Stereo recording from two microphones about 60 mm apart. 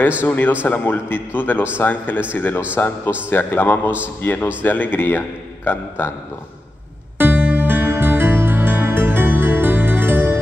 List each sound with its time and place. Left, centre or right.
0.2 s a man's voice: left
7.2 s music: right